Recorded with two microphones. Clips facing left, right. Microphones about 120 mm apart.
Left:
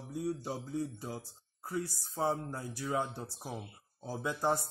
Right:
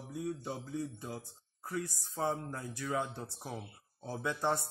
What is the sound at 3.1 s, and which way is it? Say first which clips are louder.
Speech: left 1 dB; 10° left (ahead or behind).